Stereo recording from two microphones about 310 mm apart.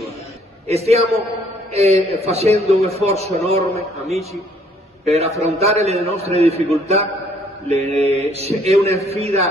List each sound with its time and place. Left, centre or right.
0.7 s a man's voice: centre
5.0 s a man's voice: right
7.6 s a man's voice: centre